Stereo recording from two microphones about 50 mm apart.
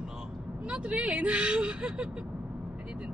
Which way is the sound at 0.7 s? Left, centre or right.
Right.